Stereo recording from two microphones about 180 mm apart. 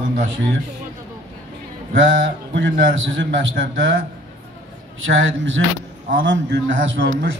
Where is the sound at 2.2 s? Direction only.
85° right.